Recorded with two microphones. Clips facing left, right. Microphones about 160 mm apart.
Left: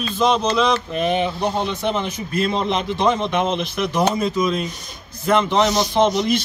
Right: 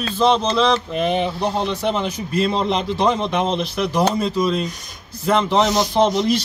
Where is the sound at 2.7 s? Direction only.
35° right (ahead or behind).